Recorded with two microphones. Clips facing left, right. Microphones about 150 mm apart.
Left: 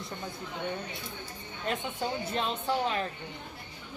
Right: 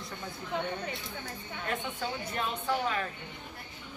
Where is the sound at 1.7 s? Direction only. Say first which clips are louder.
Left 3 dB; 20° left (ahead or behind).